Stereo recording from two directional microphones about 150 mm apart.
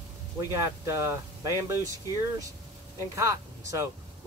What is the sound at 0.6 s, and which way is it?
Speech, 20° right (ahead or behind).